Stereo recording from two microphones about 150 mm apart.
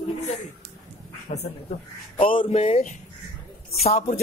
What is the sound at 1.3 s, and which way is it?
Speech, 50° left (ahead or behind).